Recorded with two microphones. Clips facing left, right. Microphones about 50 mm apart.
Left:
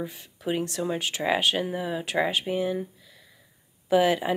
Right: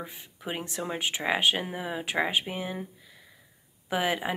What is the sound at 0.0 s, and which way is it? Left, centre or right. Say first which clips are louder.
Speech: left 6 dB; centre.